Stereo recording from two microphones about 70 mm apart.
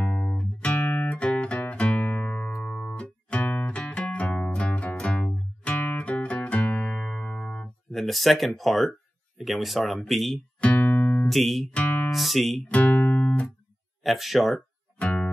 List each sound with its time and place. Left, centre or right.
0.0 s music: centre
0.7 s music: left
7.9 s speech: centre
10.6 s music: left
11.2 s speech: centre
11.7 s music: left
12.1 s speech: centre
12.6 s music: left
14.0 s speech: centre
15.0 s music: centre